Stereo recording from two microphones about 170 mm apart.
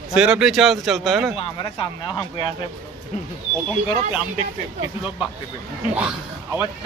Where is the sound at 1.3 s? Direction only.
30° left (ahead or behind).